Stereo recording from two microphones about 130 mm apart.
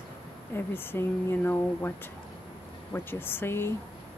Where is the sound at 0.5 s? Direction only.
15° left (ahead or behind).